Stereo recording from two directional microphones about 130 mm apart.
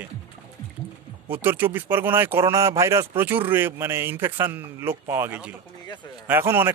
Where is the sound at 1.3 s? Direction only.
15° right (ahead or behind).